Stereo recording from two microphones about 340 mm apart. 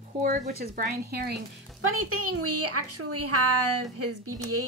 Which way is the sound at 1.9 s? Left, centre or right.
Right.